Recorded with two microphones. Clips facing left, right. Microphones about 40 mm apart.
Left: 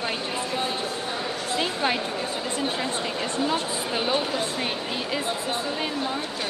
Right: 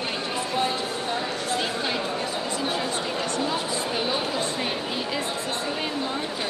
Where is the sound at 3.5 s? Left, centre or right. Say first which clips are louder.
Even; centre.